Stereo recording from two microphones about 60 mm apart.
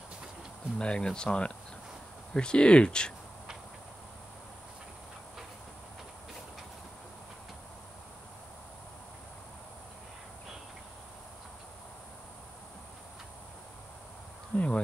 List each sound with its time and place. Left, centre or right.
0.7 s speech: centre
14.5 s honk: left